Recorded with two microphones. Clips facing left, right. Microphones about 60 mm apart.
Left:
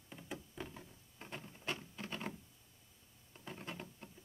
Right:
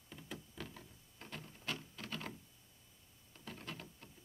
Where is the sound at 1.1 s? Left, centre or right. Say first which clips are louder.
Left 1 dB; left.